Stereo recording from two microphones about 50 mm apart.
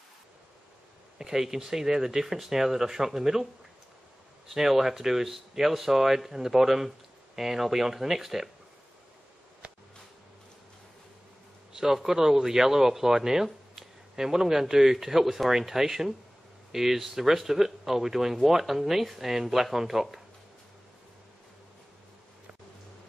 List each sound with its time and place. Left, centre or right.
1.1 s speech: centre
4.5 s speech: centre
9.6 s a sound: right
11.8 s speech: centre